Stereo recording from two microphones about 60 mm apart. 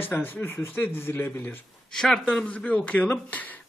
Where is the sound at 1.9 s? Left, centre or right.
Centre; by 3.6 s left.